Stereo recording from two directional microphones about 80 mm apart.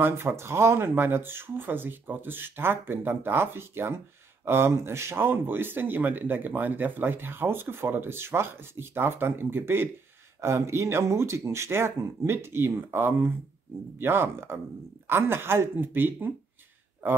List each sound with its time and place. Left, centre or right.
0.0 s speech: right